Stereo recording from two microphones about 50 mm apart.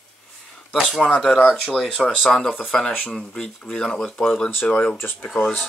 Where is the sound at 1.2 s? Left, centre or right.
Centre.